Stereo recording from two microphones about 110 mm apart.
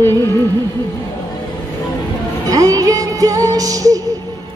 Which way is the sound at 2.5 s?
30° right (ahead or behind).